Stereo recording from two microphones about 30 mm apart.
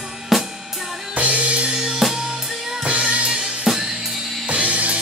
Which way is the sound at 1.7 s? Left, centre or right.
Right.